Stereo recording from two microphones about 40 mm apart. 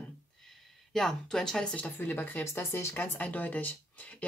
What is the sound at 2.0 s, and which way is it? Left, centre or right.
Speech, left.